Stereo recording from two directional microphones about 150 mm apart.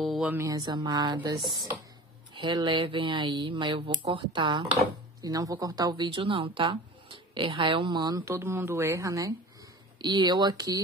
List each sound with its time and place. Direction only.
0.0 s a sound: centre (ahead or behind)
0.3 s speech: 15° right (ahead or behind)
0.6 s speech: 25° right (ahead or behind)
8.4 s speech: 15° right (ahead or behind)